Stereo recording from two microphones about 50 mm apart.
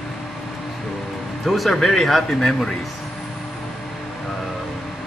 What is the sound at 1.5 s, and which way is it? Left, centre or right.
Speech, centre.